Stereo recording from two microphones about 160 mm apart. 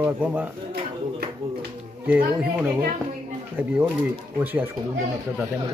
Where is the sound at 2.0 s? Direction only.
10° right (ahead or behind).